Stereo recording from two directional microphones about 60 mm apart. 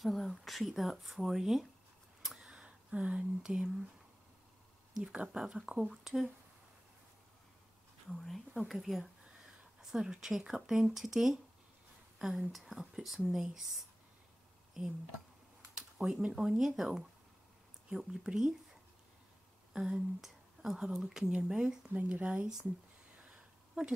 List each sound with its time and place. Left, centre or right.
0.0 s speech: centre
2.2 s a sound: centre
5.0 s speech: centre
8.1 s speech: centre
14.8 s speech: centre
15.7 s a sound: centre
16.2 s speech: centre
19.7 s speech: centre